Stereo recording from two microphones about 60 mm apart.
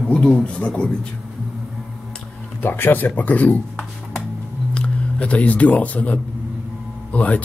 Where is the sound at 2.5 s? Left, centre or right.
Left.